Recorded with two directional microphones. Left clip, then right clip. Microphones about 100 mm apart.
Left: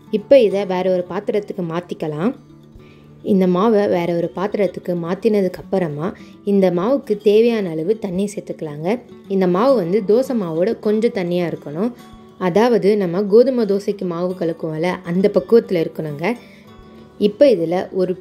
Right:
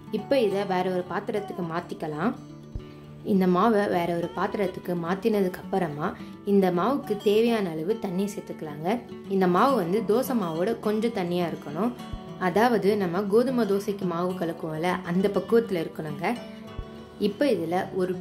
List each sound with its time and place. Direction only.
0.1 s a woman's voice: 60° left (ahead or behind)
3.4 s speech: 50° left (ahead or behind); by 16.3 s 65° left (ahead or behind)
17.2 s speech: 55° left (ahead or behind)